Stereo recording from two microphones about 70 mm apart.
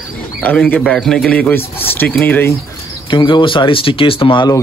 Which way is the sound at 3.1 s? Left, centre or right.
Left.